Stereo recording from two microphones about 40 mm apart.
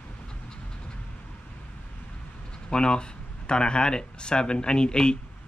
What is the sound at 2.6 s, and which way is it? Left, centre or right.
Speech, left.